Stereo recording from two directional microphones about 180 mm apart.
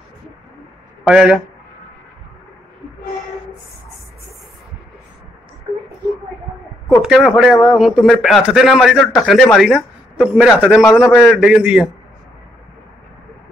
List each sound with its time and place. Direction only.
1.0 s speech: 5° right (ahead or behind)
7.0 s a man's voice: centre (ahead or behind)